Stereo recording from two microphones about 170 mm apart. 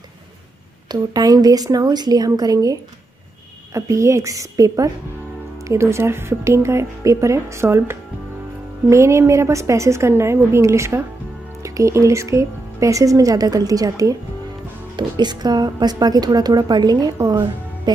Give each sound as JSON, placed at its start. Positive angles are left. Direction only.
{"t": 0.8, "sound": "a woman's voice", "side_deg": -25}